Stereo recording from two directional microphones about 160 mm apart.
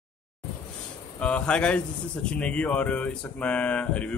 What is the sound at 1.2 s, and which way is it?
Speech, 5° left (ahead or behind).